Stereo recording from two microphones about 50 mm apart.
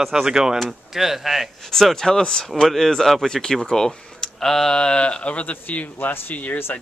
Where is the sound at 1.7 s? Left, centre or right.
Centre; by 6.5 s left.